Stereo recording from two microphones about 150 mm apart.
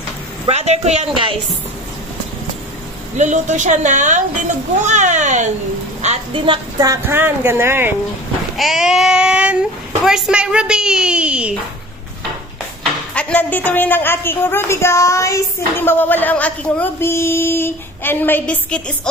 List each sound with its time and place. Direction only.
0.5 s a woman's voice: 45° right (ahead or behind)
3.2 s a woman's voice: 55° right (ahead or behind)
6.0 s a woman's voice: 35° right (ahead or behind)
6.9 s speech: 15° right (ahead or behind)
8.5 s speech: centre (ahead or behind)
12.8 s a woman's voice: 10° left (ahead or behind)